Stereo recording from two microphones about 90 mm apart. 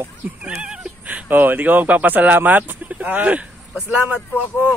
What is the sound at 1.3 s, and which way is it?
Speech, 20° right (ahead or behind).